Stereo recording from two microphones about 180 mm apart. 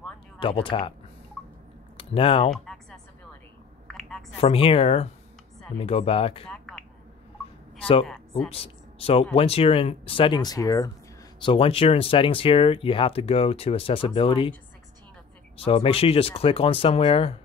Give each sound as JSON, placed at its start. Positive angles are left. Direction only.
{"t": 0.4, "sound": "speech", "side_deg": 30}
{"t": 2.0, "sound": "speech", "side_deg": 30}
{"t": 2.5, "sound": "music", "side_deg": 0}
{"t": 3.8, "sound": "a sound", "side_deg": 0}
{"t": 4.4, "sound": "speech", "side_deg": 35}
{"t": 6.5, "sound": "a sound", "side_deg": 5}
{"t": 8.5, "sound": "speech", "side_deg": 30}
{"t": 11.3, "sound": "speech", "side_deg": 30}
{"t": 15.5, "sound": "speech", "side_deg": 30}